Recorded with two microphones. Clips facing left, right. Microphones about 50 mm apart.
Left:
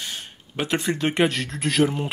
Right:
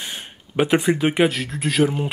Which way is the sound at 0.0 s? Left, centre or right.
Centre.